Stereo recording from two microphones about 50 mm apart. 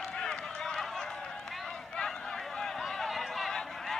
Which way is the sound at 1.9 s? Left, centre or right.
Centre.